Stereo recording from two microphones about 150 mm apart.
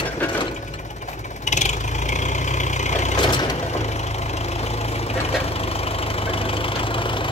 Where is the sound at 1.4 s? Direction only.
50° left (ahead or behind).